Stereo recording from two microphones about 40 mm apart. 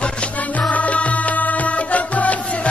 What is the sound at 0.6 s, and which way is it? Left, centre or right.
Music, left.